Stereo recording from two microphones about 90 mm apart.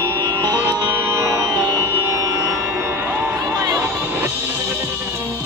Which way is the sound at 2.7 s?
25° right (ahead or behind).